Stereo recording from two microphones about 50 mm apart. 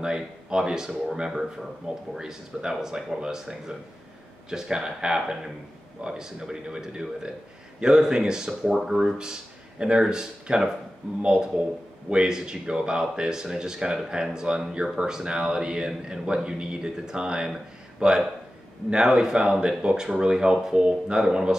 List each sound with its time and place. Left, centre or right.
0.0 s a man's voice: centre